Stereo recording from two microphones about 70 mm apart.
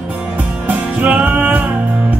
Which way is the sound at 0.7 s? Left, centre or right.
Right.